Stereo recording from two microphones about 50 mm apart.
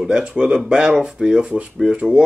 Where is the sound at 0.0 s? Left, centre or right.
Centre.